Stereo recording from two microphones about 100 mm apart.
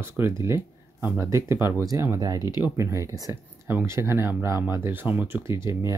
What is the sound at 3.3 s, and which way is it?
Speech, 20° right (ahead or behind).